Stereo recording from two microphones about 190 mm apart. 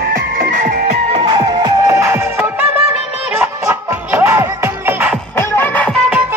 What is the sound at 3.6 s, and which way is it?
Music, 15° right (ahead or behind).